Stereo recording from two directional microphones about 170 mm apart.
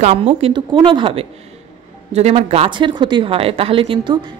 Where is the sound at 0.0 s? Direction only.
35° right (ahead or behind).